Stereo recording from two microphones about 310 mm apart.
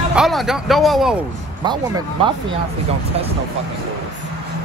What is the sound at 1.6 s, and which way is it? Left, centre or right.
Speech, centre.